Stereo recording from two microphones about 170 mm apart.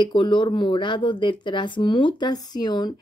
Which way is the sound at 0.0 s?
30° left (ahead or behind).